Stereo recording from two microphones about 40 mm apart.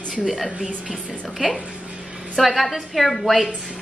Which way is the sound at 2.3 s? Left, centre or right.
Centre.